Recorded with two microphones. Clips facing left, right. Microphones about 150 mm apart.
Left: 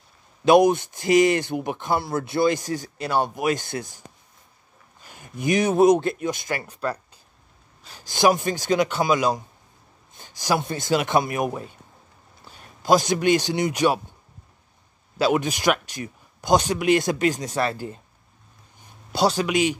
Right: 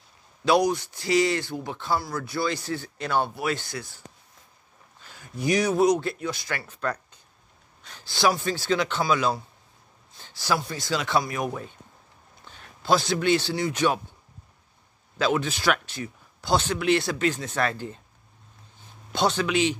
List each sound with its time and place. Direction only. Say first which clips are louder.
0.5 s speech: left 6 dB; 20° left (ahead or behind)
5.0 s speech: left 2 dB; 20° left (ahead or behind)
8.1 s speech: left 4 dB; 15° left (ahead or behind)
10.1 s a sound: left 3 dB; 15° left (ahead or behind)
10.9 s speech: left 4 dB; 15° left (ahead or behind)
15.1 s speech: left 3 dB; 10° left (ahead or behind)
17.6 s speech: left 2 dB; 5° left (ahead or behind)
19.4 s speech: left 2 dB; 10° left (ahead or behind)